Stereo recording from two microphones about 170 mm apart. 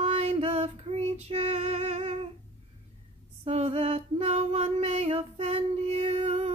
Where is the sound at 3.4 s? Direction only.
35° right (ahead or behind).